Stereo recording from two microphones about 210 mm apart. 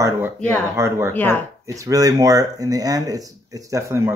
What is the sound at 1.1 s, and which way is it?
Speech, 10° left (ahead or behind).